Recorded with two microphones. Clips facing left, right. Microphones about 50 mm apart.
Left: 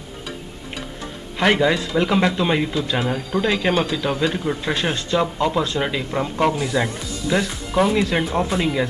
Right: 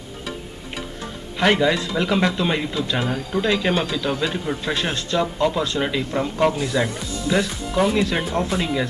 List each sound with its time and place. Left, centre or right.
1.4 s speech: centre